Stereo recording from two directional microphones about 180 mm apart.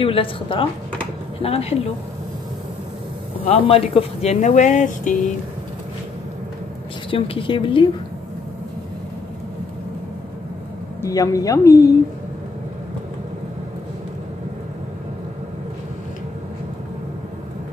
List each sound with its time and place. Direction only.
0.0 s speech: 30° left (ahead or behind)
3.4 s speech: 30° left (ahead or behind)
7.1 s speech: 30° left (ahead or behind)
11.0 s speech: 20° left (ahead or behind)